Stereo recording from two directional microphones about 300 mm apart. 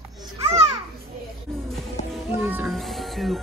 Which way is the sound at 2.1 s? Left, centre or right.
Centre.